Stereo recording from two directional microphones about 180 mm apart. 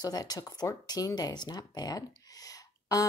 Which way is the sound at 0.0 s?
20° left (ahead or behind).